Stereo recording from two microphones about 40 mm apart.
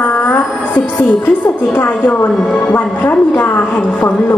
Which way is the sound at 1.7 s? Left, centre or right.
Left.